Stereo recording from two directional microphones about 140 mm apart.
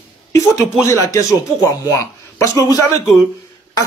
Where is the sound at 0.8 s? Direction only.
20° left (ahead or behind).